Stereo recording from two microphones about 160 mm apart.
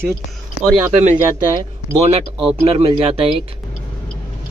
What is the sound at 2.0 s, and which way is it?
Speech, 35° right (ahead or behind).